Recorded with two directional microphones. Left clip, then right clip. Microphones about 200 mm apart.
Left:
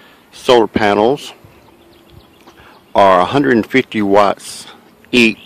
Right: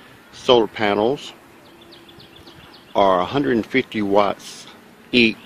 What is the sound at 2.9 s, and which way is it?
Speech, 20° left (ahead or behind).